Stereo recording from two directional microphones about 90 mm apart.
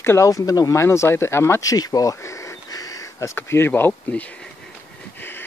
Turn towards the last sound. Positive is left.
turn(degrees=25)  # may be behind; listen again after turning